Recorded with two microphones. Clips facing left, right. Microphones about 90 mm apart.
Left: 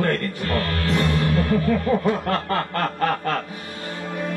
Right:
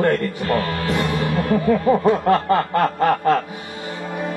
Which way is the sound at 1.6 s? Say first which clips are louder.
Right 4 dB; 10° right (ahead or behind).